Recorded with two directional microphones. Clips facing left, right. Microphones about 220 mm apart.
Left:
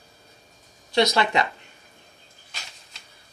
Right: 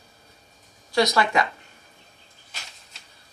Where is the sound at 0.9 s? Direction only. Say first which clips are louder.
Even; 25° left (ahead or behind).